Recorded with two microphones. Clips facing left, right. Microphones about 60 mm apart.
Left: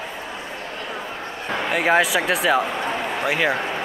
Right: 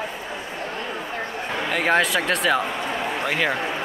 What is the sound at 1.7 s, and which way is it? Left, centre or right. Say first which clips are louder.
Speech: left 2 dB; centre.